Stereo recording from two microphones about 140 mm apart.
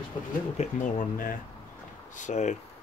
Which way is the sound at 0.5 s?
65° left (ahead or behind).